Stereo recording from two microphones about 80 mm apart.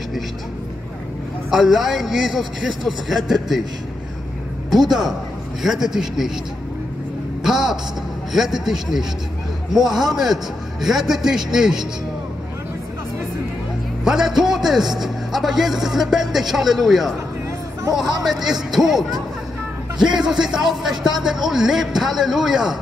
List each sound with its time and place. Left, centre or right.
1.5 s a man's voice: centre
4.6 s a man's voice: right
5.6 s a man's voice: centre
7.4 s a man's voice: centre
14.0 s a man's voice: centre
18.2 s a man's voice: centre